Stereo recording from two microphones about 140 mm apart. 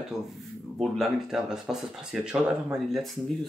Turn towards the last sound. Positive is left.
turn(degrees=0)  # may be behind; listen again after turning